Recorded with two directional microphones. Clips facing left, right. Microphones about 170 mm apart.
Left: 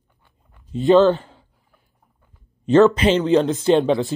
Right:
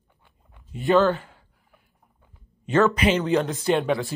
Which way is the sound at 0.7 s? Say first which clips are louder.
Left 6 dB; 25° left (ahead or behind).